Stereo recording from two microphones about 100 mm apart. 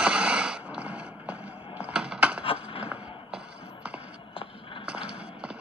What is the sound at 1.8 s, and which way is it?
Computer keyboard, 10° right (ahead or behind).